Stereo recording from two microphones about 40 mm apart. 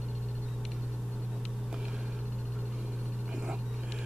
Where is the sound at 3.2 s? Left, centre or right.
Right.